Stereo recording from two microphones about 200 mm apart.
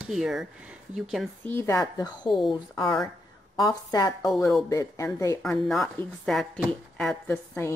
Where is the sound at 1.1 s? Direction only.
5° left (ahead or behind); by 2.3 s 20° left (ahead or behind).